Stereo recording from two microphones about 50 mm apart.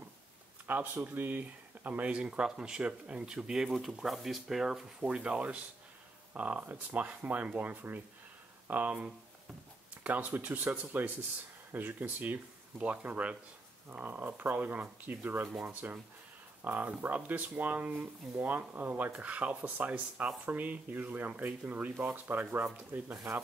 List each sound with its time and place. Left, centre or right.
0.7 s speech: right
2.1 s speech: centre
5.0 s speech: right
10.0 s speech: right